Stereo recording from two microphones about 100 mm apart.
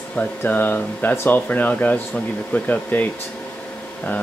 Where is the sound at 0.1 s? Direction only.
15° left (ahead or behind).